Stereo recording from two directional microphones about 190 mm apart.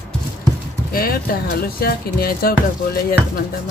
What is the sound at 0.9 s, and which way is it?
Speech, 50° left (ahead or behind).